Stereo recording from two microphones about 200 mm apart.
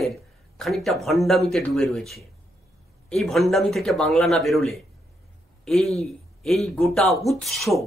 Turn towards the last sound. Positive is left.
turn(degrees=0)  # may be behind; listen again after turning